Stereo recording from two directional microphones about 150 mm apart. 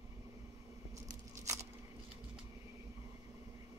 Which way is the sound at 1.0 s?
20° right (ahead or behind).